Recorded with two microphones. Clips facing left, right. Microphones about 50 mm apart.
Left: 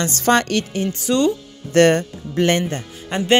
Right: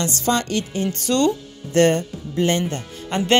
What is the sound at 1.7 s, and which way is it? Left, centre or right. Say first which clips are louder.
Speech: left 3 dB; left.